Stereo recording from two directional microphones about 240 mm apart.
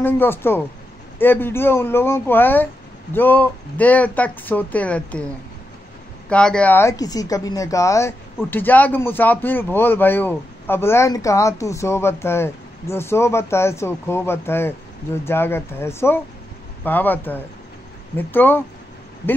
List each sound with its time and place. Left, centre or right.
0.0 s speech: centre